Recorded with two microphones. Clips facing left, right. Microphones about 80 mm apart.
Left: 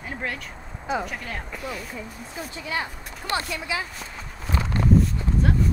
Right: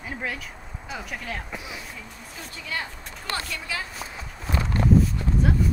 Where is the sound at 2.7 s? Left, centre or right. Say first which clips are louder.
Left 2 dB; left.